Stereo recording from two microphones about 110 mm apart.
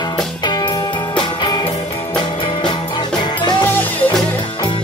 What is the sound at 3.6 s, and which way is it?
Music, 20° left (ahead or behind).